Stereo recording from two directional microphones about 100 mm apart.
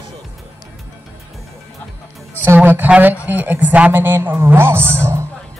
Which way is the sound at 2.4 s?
20° right (ahead or behind).